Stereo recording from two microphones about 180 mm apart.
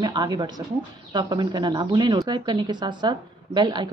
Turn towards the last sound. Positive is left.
turn(degrees=-25)  # may be behind; listen again after turning